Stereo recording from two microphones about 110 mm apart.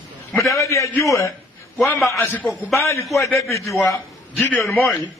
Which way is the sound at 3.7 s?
Centre (ahead or behind).